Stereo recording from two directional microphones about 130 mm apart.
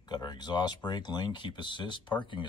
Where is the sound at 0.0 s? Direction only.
35° left (ahead or behind).